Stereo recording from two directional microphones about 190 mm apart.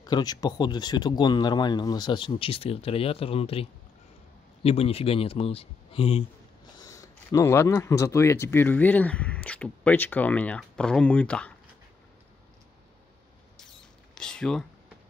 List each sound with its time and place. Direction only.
0.0 s speech: 20° left (ahead or behind)
4.6 s speech: 30° left (ahead or behind)
6.8 s speech: 15° left (ahead or behind)
13.6 s rodents: 5° left (ahead or behind)